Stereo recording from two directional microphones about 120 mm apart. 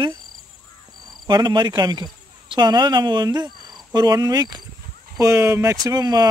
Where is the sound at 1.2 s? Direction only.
35° right (ahead or behind).